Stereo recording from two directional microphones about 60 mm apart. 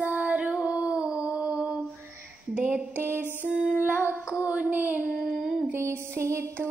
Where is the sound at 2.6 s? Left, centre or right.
Centre.